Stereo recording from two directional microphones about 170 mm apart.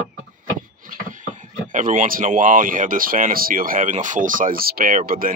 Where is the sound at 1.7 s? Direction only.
50° right (ahead or behind).